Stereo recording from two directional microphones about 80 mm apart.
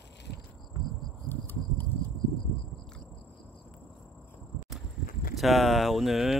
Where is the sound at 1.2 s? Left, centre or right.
Left.